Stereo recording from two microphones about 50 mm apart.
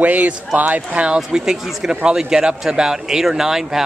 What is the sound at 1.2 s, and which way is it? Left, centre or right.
Speech, centre.